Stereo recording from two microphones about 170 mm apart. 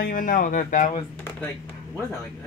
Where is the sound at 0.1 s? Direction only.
50° left (ahead or behind).